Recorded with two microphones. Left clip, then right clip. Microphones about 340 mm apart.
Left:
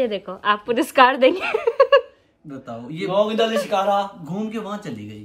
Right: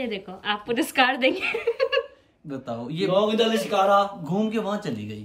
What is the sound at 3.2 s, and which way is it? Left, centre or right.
A man's voice, centre.